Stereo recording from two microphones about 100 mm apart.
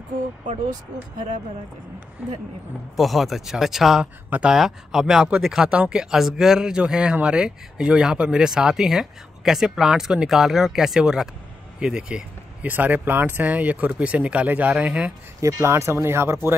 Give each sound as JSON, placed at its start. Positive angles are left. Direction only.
{"t": 3.0, "sound": "speech", "side_deg": 0}
{"t": 15.4, "sound": "speech", "side_deg": -30}